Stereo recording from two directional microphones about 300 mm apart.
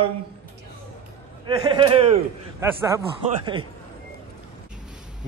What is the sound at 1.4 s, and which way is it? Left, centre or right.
A man's voice, centre.